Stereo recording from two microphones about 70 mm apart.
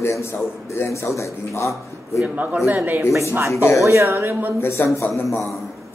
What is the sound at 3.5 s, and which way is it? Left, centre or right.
Speech, left.